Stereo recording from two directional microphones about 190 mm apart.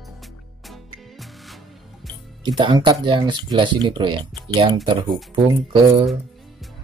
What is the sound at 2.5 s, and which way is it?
Speech, 20° right (ahead or behind).